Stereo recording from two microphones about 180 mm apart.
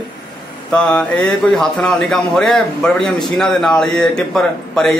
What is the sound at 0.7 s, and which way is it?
Speech, 5° left (ahead or behind).